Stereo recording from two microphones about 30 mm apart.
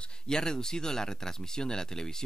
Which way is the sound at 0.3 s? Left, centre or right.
Centre.